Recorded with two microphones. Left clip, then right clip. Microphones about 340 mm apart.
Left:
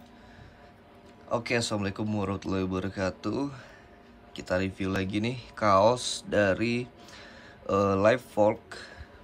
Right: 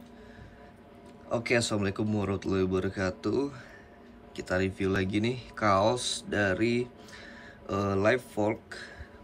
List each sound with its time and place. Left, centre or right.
1.3 s speech: centre